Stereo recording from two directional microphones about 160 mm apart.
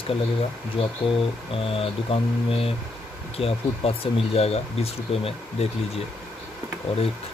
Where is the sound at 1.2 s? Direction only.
35° left (ahead or behind).